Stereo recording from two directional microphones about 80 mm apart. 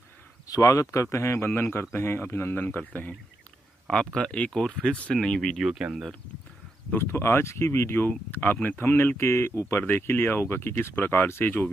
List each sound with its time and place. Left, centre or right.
0.5 s speech: left
3.8 s speech: centre
5.6 s speech: centre
6.9 s speech: left